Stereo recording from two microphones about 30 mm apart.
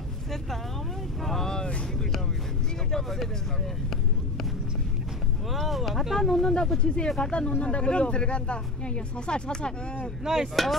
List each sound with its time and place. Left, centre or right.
1.2 s vehicle: centre
5.7 s speech: centre
6.4 s speech: left
10.2 s a sound: centre